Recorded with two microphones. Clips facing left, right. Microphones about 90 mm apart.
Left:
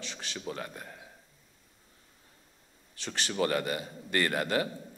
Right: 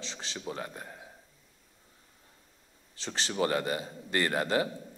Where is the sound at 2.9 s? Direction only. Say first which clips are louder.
Even; 25° right (ahead or behind).